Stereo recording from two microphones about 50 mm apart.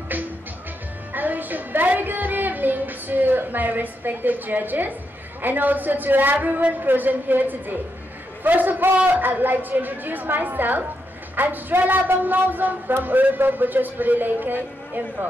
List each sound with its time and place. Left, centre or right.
0.1 s music: right
5.4 s a man's voice: right